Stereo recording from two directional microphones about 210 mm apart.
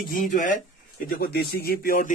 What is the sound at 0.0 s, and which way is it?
Speech, 40° left (ahead or behind).